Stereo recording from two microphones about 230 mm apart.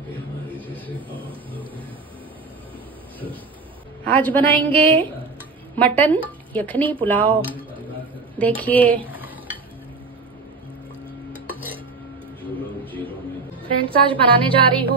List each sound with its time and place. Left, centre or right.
4.1 s a woman's voice: centre
8.4 s a woman's voice: centre
9.0 s cutlery: centre
11.3 s a sound: centre
13.8 s music: right